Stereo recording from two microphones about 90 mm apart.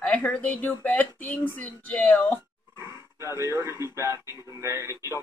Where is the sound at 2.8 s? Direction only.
30° right (ahead or behind).